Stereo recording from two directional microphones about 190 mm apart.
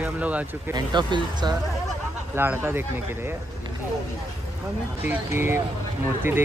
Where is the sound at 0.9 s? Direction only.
25° right (ahead or behind).